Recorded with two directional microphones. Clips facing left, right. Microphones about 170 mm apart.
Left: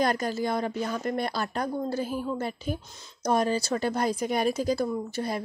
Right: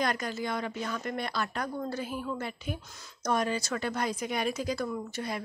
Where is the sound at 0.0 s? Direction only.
35° left (ahead or behind).